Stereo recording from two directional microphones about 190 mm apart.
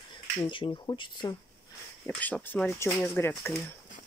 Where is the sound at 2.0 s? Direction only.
10° left (ahead or behind).